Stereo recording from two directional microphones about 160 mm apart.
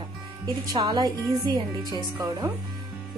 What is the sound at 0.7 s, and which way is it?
Speech, 25° right (ahead or behind).